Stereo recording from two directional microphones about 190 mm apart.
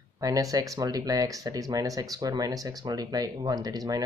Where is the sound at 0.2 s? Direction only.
20° right (ahead or behind).